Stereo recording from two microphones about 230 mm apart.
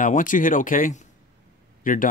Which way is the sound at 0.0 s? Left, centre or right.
Left.